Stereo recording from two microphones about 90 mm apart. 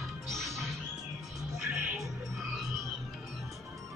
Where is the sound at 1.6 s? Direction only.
35° right (ahead or behind).